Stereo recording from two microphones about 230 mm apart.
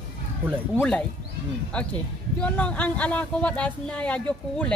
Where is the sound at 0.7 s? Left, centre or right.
Centre.